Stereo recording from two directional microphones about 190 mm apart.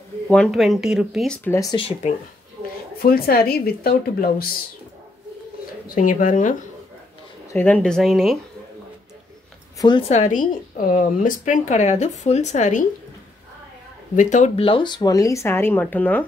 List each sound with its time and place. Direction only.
0.3 s speech: centre (ahead or behind)
1.8 s a woman's voice: 35° left (ahead or behind)
3.0 s a woman's voice: 55° left (ahead or behind)
5.9 s a woman's voice: 45° left (ahead or behind)
7.5 s speech: 10° left (ahead or behind)
9.8 s a woman's voice: 25° left (ahead or behind)
14.1 s speech: 40° left (ahead or behind); by 16.3 s 10° left (ahead or behind)